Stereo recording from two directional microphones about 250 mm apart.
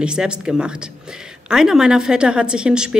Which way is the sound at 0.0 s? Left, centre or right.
Centre.